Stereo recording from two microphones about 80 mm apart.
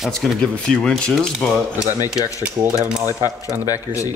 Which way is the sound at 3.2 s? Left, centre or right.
Left.